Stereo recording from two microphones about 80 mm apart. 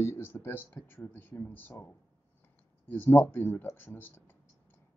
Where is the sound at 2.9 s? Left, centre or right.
Left.